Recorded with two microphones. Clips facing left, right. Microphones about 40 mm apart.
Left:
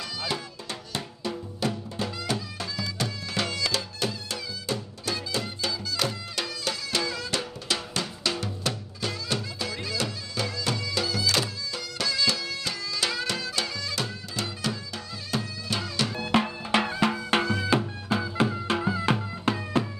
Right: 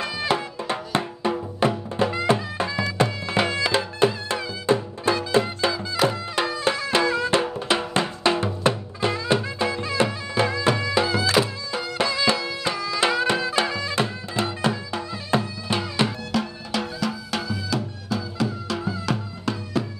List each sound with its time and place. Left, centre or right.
0.0 s music: right
15.7 s bagpipes: right
16.2 s music: left